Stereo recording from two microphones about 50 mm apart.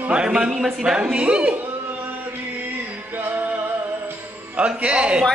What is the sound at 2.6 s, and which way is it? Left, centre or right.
Music, right.